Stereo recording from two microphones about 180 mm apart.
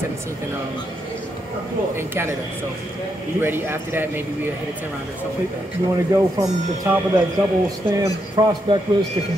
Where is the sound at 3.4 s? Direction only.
10° right (ahead or behind).